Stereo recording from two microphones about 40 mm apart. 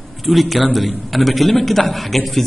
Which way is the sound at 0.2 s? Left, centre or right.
Centre.